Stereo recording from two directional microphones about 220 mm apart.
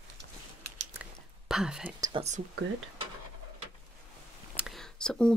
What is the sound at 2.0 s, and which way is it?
Speech, 25° right (ahead or behind).